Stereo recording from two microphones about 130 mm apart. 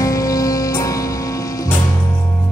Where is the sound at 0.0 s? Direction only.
25° left (ahead or behind).